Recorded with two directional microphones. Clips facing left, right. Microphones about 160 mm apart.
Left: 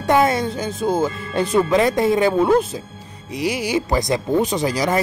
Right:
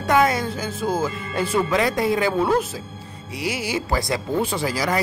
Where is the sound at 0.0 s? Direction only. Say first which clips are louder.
Left 2 dB; 25° left (ahead or behind).